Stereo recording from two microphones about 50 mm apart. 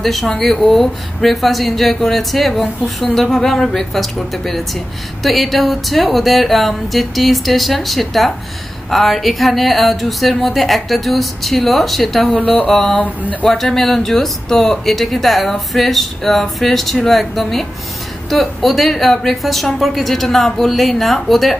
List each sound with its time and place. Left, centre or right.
0.0 s speech: centre
12.3 s speech: left
12.6 s a sound: centre
13.5 s speech: centre